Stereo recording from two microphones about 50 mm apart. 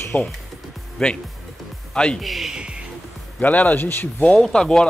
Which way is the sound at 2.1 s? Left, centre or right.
Centre.